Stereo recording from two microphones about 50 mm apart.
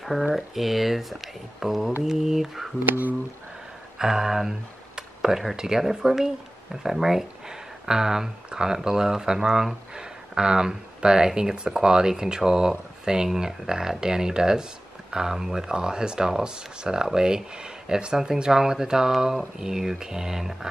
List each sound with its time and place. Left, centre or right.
0.0 s speech: centre
2.9 s speech: right
4.0 s speech: centre
4.9 s a sound: centre
5.6 s speech: centre